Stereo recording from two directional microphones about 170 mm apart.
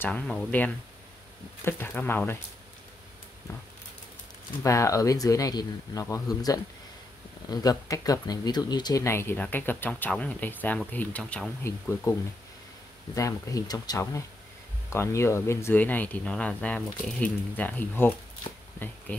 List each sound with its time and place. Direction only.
0.0 s speech: 5° left (ahead or behind)
4.6 s speech: 20° left (ahead or behind)